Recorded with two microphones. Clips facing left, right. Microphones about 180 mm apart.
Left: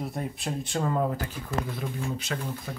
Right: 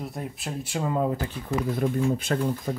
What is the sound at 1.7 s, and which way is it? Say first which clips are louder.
Speech: right 8 dB; 45° right (ahead or behind).